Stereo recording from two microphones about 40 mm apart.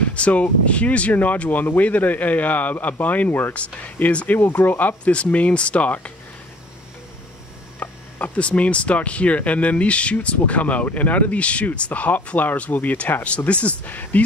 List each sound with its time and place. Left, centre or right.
0.1 s speech: left
4.3 s speech: left
4.6 s speech: left
5.1 s speech: left
7.8 s speech: left
13.1 s speech: left
13.5 s speech: left
13.8 s speech: left